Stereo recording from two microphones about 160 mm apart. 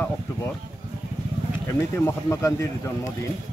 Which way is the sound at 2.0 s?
20° left (ahead or behind).